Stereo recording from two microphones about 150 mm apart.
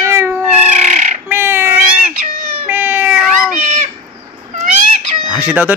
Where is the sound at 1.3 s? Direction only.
15° right (ahead or behind).